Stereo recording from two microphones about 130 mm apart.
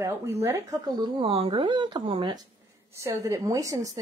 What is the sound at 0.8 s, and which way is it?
Speech, 35° right (ahead or behind).